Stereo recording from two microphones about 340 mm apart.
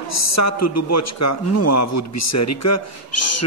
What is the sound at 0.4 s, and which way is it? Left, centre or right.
A man's voice, left.